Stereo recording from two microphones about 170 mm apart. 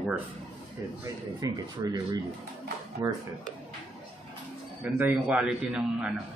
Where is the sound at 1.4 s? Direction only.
20° right (ahead or behind).